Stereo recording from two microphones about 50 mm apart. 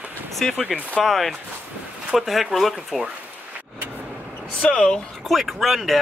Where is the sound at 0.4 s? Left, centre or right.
Centre.